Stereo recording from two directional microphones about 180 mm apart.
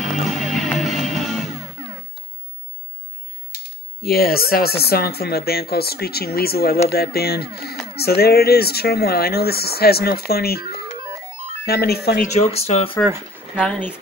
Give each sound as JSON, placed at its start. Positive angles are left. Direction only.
{"t": 0.0, "sound": "music", "side_deg": 0}
{"t": 4.0, "sound": "speech", "side_deg": 55}
{"t": 12.3, "sound": "speech", "side_deg": 35}
{"t": 13.6, "sound": "speech", "side_deg": 5}